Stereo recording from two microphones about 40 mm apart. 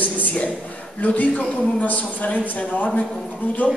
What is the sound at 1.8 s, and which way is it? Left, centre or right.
Speech, left.